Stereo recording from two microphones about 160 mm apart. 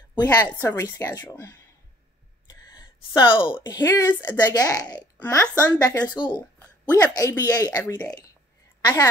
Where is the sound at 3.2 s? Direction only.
30° left (ahead or behind).